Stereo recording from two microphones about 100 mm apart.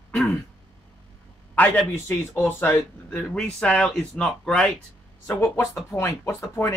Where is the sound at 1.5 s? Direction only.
15° left (ahead or behind).